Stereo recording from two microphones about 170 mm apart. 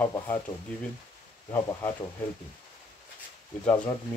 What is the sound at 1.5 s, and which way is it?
Speech, 15° left (ahead or behind).